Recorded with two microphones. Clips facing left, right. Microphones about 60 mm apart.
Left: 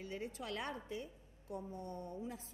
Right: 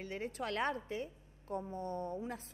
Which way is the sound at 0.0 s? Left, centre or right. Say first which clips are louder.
Right 4 dB; right.